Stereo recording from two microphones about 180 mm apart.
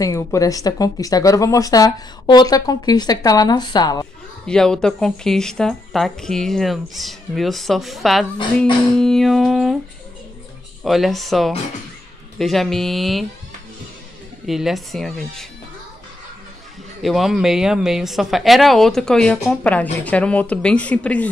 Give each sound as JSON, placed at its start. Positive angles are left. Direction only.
{"t": 0.0, "sound": "speech", "side_deg": 15}
{"t": 4.5, "sound": "speech", "side_deg": 5}
{"t": 10.8, "sound": "speech", "side_deg": 0}
{"t": 14.4, "sound": "speech", "side_deg": 0}
{"t": 17.0, "sound": "speech", "side_deg": 0}